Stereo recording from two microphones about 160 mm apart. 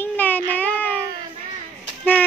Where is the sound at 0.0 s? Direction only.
10° left (ahead or behind).